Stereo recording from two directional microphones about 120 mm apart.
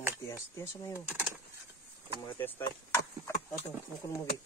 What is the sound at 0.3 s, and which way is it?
Speech, 25° left (ahead or behind).